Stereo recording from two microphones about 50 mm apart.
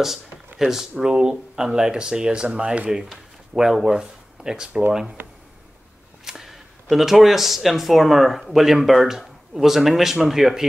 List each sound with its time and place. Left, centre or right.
0.6 s speech: centre
6.2 s speech: centre